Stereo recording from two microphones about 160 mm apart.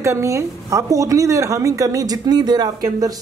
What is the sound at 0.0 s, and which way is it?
A woman's voice, 20° right (ahead or behind).